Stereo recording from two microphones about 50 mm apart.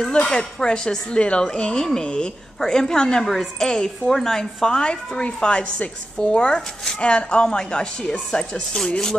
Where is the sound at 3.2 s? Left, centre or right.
Centre.